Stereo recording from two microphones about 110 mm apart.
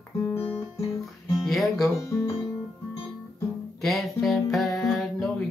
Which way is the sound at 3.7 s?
Centre (ahead or behind).